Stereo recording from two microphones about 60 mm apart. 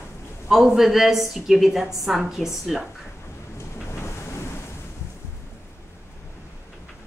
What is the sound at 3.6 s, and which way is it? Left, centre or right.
Ocean, left.